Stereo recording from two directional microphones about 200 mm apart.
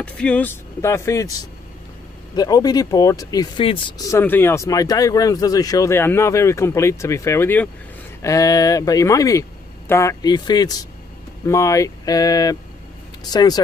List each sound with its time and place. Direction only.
0.0 s speech: 5° left (ahead or behind); by 4.1 s 25° left (ahead or behind)
4.1 s speech: 10° left (ahead or behind)